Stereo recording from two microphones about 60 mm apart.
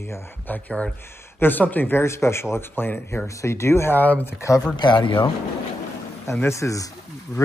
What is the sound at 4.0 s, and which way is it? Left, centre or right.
Speech, left.